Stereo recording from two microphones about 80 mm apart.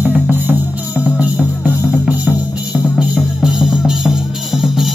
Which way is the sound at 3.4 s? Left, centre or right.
Centre.